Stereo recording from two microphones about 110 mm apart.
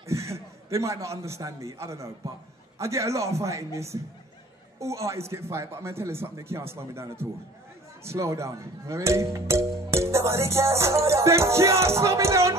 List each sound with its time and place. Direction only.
0.0 s speech: 25° right (ahead or behind)